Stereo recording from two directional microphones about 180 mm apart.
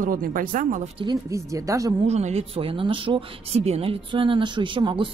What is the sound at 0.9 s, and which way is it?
A woman's voice, 20° right (ahead or behind).